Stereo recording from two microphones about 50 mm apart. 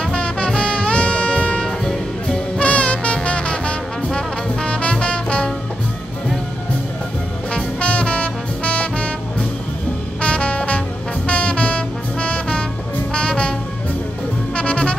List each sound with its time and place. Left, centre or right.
0.0 s music: left
1.9 s music: centre
2.6 s brass instrument: left
5.0 s music: left
7.5 s music: left